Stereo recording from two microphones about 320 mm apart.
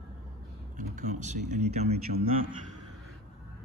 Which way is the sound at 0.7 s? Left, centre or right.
Right.